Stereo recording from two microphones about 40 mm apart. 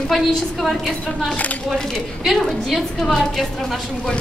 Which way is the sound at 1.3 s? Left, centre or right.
Left.